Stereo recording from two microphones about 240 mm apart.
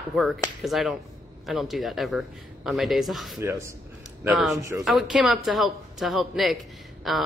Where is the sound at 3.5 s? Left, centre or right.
Centre.